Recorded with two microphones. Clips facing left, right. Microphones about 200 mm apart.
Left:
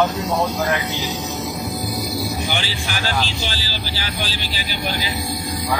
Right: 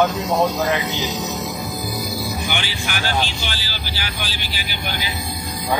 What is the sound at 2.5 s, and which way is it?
A man's voice, 35° left (ahead or behind).